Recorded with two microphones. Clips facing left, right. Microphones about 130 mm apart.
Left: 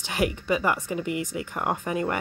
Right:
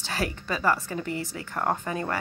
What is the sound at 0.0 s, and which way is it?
Speech, 20° left (ahead or behind).